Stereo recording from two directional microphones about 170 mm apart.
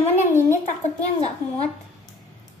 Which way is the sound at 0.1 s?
10° left (ahead or behind).